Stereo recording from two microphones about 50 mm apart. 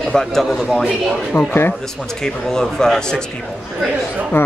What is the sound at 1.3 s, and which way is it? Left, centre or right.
Speech, left.